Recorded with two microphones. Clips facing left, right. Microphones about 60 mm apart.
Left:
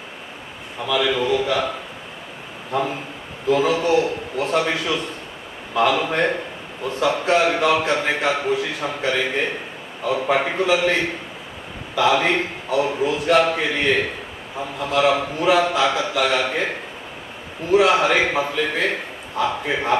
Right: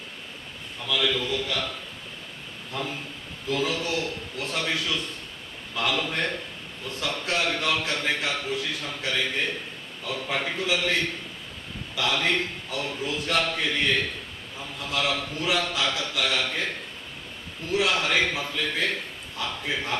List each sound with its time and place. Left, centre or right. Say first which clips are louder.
0.8 s a man's voice: left 7 dB; left